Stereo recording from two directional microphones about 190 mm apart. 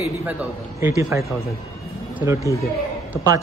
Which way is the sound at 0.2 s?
10° right (ahead or behind).